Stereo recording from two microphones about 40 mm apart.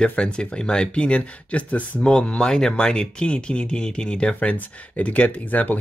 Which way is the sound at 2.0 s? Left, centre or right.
Left.